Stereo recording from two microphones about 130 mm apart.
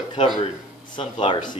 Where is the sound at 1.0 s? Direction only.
40° left (ahead or behind).